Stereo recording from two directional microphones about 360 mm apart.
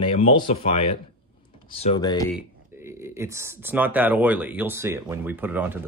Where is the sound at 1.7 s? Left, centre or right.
Centre.